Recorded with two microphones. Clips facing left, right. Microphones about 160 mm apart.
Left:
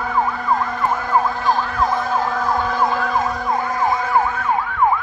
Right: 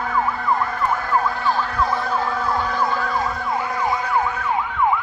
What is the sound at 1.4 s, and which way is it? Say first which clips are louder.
Emergency vehicle: left 2 dB; 45° left (ahead or behind).